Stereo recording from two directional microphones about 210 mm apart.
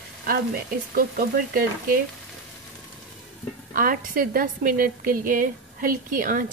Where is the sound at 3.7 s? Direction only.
40° right (ahead or behind).